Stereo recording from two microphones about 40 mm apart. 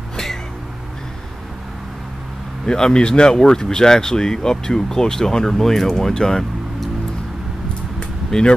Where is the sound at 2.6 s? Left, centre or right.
Centre.